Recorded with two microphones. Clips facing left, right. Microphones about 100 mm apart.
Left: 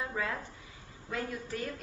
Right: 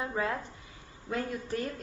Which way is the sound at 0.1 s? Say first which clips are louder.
Right 3 dB; 30° right (ahead or behind).